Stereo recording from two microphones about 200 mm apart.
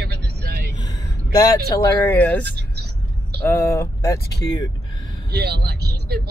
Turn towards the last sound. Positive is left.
turn(degrees=-55)  # may be behind; listen again after turning